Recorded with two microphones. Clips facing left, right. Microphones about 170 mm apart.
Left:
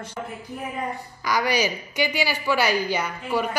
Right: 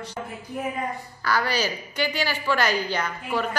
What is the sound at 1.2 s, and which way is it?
A woman's voice, 15° left (ahead or behind).